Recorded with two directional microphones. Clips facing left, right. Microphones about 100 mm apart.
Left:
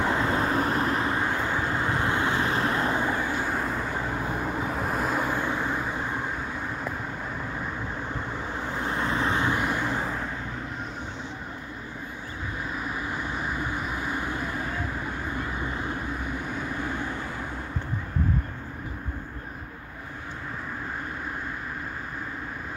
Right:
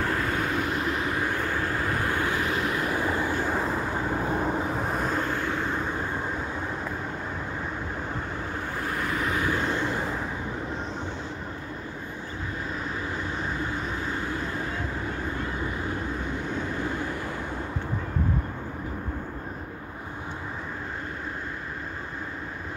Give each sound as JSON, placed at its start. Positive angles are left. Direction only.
{"t": 0.0, "sound": "vehicle", "side_deg": 25}
{"t": 3.0, "sound": "train", "side_deg": 20}
{"t": 3.4, "sound": "vehicle", "side_deg": -5}
{"t": 8.7, "sound": "vehicle", "side_deg": 25}
{"t": 9.6, "sound": "vehicle", "side_deg": 15}
{"t": 13.4, "sound": "vehicle", "side_deg": 15}